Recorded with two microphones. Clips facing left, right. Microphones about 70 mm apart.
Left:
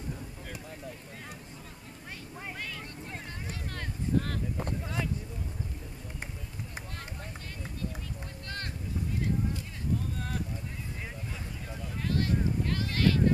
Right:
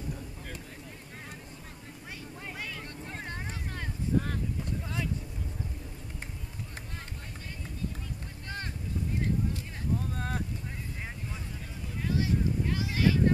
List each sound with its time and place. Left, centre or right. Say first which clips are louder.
2.5 s vehicle: right 2 dB; centre
4.8 s vehicle: left 1 dB; centre
10.1 s boat: right 2 dB; right
12.0 s a sound: even; centre